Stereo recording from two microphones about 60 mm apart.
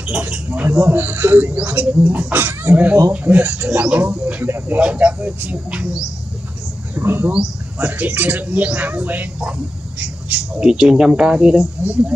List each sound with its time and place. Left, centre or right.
0.2 s speech: right
0.7 s a man's voice: right
5.7 s speech: centre
7.0 s a man's voice: right
10.6 s speech: centre
11.8 s speech: right